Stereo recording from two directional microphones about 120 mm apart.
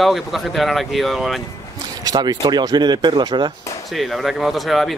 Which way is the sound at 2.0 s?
35° right (ahead or behind).